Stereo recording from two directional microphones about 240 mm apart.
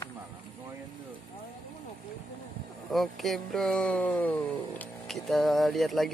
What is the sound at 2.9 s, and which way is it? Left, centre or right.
Speech, centre.